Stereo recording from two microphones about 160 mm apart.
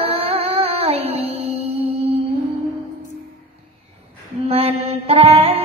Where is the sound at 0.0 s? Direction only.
40° right (ahead or behind).